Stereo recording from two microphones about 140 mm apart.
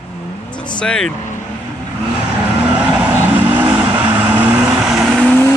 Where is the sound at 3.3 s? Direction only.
15° right (ahead or behind).